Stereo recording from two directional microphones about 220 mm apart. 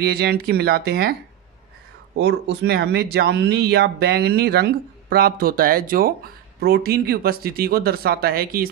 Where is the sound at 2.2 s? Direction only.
45° right (ahead or behind).